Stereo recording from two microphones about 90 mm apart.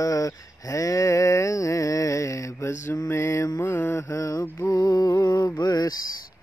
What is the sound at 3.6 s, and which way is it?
Mantra, 20° left (ahead or behind).